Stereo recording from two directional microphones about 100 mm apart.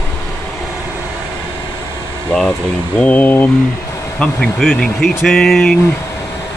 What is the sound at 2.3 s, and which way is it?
Speech, 10° left (ahead or behind).